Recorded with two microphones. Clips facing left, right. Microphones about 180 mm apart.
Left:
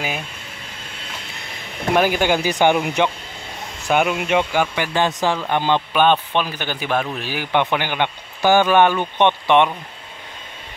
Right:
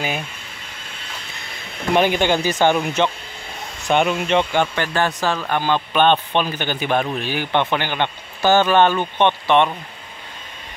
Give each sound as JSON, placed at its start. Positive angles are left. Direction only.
{"t": 2.0, "sound": "speech", "side_deg": 5}
{"t": 6.3, "sound": "speech", "side_deg": 5}